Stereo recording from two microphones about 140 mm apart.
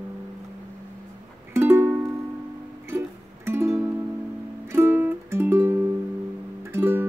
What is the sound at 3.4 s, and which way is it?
Music, 20° right (ahead or behind).